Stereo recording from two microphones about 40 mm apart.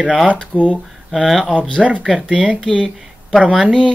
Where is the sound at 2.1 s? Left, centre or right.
Right.